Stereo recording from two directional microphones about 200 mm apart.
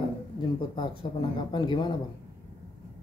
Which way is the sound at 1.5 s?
20° left (ahead or behind).